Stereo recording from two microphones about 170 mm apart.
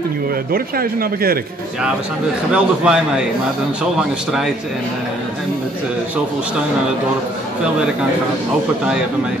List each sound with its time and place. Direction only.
0.5 s speech: 60° right (ahead or behind)
2.5 s a man's voice: 5° right (ahead or behind)